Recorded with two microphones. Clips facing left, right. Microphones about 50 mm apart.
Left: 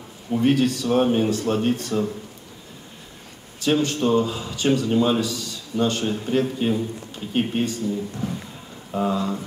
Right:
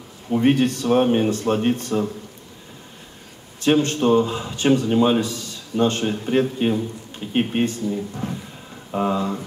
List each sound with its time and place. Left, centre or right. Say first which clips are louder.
0.3 s speech: right 2 dB; right
3.6 s speech: right 3 dB; right
5.7 s speech: right 2 dB; right